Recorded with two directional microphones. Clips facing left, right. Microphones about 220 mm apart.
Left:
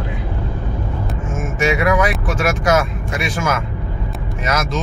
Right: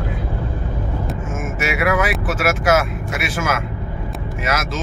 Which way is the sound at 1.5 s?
5° right (ahead or behind).